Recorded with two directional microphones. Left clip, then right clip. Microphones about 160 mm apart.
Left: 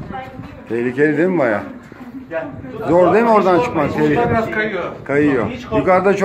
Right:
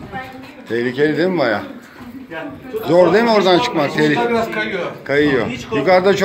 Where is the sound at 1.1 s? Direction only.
35° left (ahead or behind).